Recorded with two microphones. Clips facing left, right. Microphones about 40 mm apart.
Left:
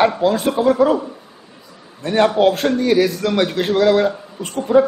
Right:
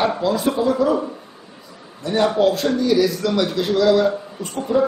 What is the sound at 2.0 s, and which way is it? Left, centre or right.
A man's voice, left.